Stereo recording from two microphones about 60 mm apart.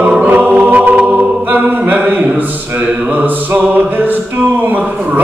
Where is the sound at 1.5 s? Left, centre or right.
Right.